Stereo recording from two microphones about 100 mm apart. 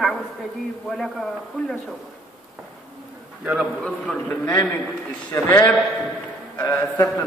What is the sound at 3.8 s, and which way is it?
A man's voice, 10° left (ahead or behind).